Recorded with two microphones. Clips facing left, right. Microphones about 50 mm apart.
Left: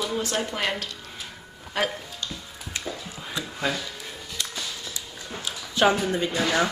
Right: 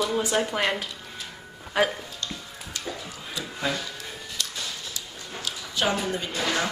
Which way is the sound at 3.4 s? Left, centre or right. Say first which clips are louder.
Left 1 dB; left.